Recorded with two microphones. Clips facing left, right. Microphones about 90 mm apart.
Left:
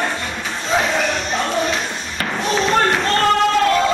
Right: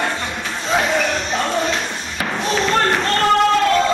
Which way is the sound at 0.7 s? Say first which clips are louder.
Even; 5° right (ahead or behind).